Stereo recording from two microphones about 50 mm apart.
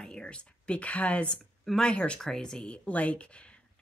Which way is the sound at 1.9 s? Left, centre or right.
Left.